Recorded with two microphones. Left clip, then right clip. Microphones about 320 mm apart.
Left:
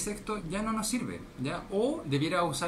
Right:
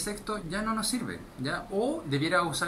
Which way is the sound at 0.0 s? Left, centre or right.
Centre.